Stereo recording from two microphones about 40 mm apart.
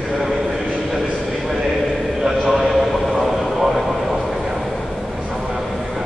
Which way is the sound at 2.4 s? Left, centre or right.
Centre.